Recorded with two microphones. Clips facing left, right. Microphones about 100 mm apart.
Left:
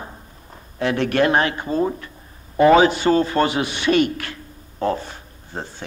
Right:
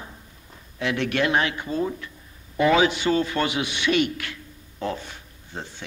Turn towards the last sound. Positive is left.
turn(degrees=40)  # may be behind; listen again after turning